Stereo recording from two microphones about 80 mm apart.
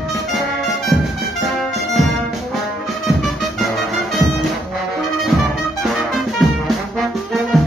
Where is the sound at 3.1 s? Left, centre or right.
Centre.